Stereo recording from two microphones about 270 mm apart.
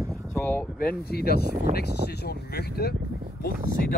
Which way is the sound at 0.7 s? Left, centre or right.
Left.